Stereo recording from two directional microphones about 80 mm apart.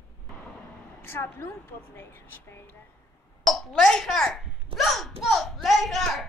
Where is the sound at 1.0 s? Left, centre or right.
Left.